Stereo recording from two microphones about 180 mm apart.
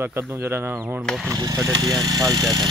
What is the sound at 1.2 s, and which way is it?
Speech, 20° right (ahead or behind).